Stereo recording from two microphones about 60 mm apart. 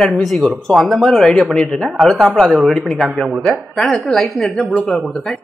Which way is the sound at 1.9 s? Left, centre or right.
Centre.